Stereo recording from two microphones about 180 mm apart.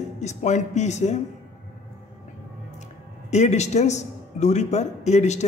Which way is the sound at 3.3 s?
40° left (ahead or behind).